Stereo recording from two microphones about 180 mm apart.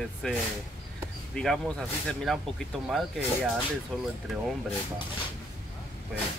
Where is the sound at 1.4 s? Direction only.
Centre (ahead or behind).